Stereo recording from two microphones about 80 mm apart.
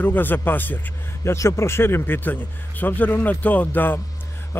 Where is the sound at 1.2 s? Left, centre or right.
Left.